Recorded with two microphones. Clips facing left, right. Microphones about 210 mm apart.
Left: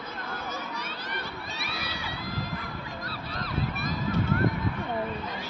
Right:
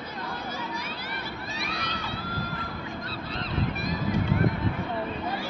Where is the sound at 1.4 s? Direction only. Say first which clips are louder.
Right 3 dB; centre (ahead or behind).